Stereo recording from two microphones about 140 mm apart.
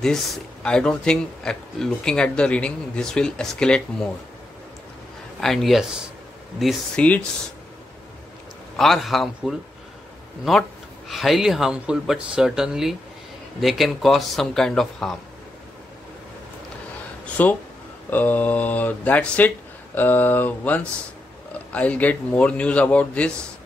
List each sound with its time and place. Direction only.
0.7 s speech: 5° left (ahead or behind)
5.4 s speech: centre (ahead or behind)
8.7 s speech: centre (ahead or behind)
17.4 s speech: 10° left (ahead or behind)